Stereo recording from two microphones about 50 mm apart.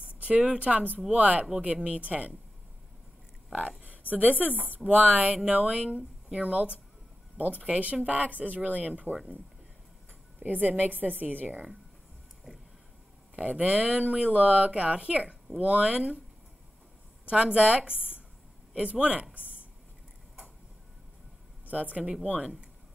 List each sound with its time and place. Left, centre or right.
0.2 s speech: right
1.4 s speech: centre
1.7 s speech: right
3.5 s a sound: right
4.1 s a woman's voice: right
10.4 s a woman's voice: right
13.4 s speech: right
17.3 s a man's voice: right
21.6 s speech: right